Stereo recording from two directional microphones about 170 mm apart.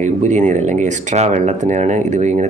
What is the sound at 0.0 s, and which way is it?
Speech, 45° right (ahead or behind).